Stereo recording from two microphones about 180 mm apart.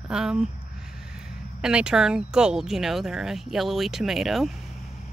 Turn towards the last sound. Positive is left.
turn(degrees=0)  # may be behind; listen again after turning